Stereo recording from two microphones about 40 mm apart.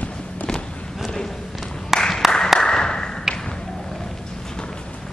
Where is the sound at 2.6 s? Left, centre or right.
Centre.